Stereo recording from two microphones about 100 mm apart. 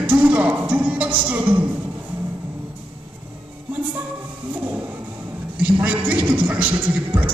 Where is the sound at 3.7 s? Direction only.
15° right (ahead or behind).